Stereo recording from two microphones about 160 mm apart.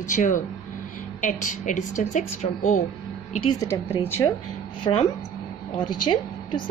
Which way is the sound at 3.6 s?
15° left (ahead or behind).